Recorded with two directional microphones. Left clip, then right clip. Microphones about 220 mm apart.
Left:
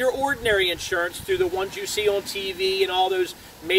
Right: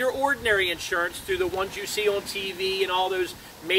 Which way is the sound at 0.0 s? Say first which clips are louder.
Left 2 dB; 20° left (ahead or behind).